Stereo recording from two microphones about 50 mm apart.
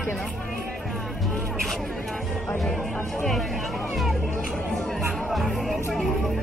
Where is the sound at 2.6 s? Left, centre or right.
Centre.